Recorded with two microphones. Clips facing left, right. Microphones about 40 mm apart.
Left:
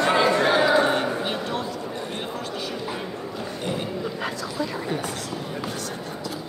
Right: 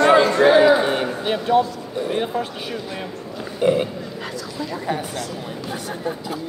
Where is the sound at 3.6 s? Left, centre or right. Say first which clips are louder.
Right 12 dB; centre.